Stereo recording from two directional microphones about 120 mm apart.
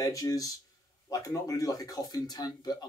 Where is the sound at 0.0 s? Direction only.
30° left (ahead or behind).